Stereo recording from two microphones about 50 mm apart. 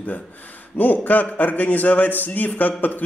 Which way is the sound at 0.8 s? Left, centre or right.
Left.